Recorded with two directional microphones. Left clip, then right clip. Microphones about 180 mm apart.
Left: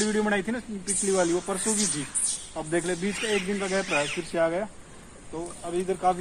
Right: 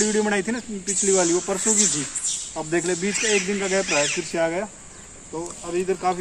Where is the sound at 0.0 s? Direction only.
15° left (ahead or behind).